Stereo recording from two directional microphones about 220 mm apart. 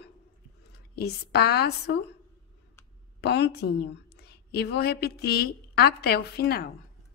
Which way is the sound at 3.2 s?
50° left (ahead or behind).